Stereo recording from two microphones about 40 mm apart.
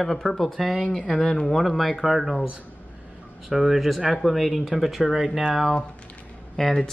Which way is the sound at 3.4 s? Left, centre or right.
Centre.